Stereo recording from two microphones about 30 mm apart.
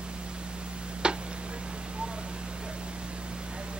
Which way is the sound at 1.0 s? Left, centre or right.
Right.